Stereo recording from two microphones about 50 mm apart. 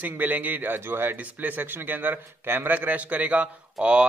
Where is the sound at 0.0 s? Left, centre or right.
Right.